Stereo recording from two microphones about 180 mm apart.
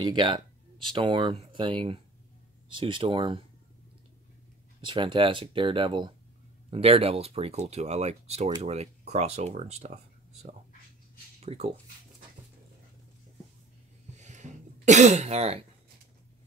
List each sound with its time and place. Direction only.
0.0 s speech: 25° right (ahead or behind)
4.8 s speech: 25° right (ahead or behind)
11.4 s speech: 35° right (ahead or behind)
14.1 s cough: 40° right (ahead or behind)